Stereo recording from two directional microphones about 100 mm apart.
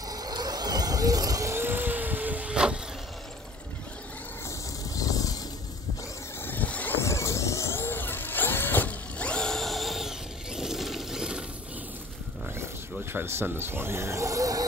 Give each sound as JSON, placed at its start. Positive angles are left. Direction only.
{"t": 0.1, "sound": "vehicle", "side_deg": -40}
{"t": 4.5, "sound": "vehicle", "side_deg": 35}
{"t": 6.4, "sound": "vehicle", "side_deg": 15}
{"t": 7.0, "sound": "vehicle", "side_deg": 30}
{"t": 13.1, "sound": "speech", "side_deg": -20}